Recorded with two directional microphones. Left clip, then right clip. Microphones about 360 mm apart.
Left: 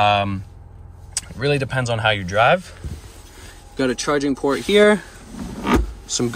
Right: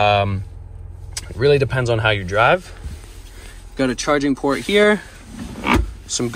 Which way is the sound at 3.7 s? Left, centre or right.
Centre.